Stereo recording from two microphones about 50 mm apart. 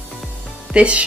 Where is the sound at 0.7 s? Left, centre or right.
Right.